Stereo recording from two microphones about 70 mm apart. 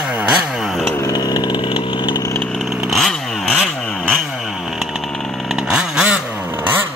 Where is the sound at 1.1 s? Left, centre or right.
Left.